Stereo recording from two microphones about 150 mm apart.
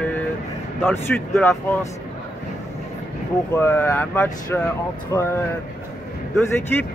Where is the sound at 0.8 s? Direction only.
15° left (ahead or behind).